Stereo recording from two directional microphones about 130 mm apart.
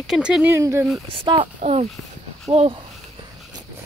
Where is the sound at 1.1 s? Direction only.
40° right (ahead or behind).